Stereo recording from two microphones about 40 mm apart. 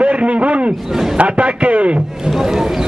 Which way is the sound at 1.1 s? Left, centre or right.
Right.